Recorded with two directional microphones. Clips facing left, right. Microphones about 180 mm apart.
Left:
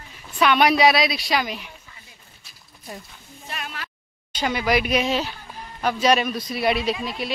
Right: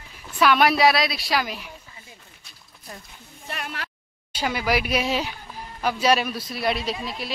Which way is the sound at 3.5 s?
60° right (ahead or behind).